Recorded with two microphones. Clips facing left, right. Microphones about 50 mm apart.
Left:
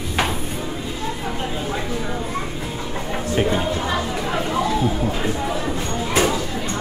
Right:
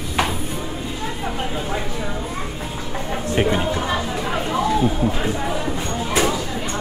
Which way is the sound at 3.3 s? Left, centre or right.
Centre.